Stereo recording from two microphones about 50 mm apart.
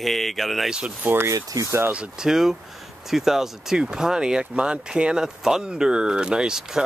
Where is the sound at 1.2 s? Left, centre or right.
Right.